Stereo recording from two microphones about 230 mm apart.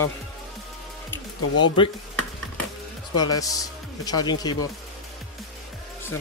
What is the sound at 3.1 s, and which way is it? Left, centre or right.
Speech, centre.